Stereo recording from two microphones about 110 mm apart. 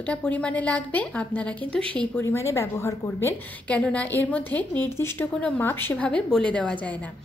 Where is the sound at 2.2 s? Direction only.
25° left (ahead or behind).